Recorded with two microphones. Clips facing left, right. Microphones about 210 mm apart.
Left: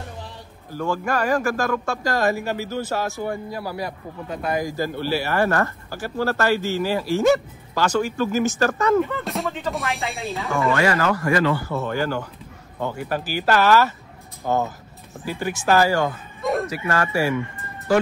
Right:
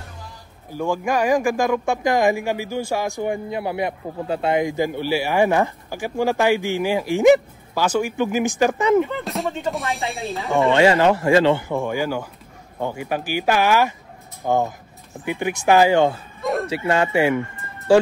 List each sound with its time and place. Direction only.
0.7 s speech: 15° right (ahead or behind)
9.2 s speech: centre (ahead or behind)
10.5 s speech: 25° right (ahead or behind)